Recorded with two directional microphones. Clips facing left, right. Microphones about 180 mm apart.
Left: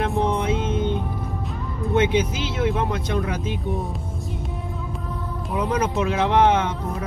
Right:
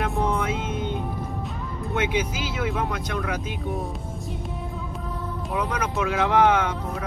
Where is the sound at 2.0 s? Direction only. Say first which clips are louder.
Left 5 dB; 25° left (ahead or behind).